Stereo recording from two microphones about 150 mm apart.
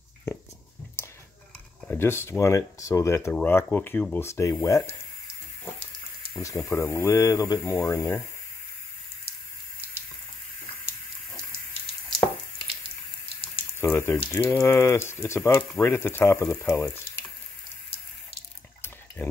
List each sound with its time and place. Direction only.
1.0 s a sound: 15° left (ahead or behind)
2.0 s speech: 15° left (ahead or behind)
6.4 s speech: 20° left (ahead or behind)
13.7 s speech: 15° left (ahead or behind)